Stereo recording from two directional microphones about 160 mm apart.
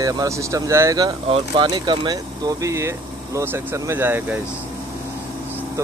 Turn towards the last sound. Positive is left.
turn(degrees=-10)  # may be behind; listen again after turning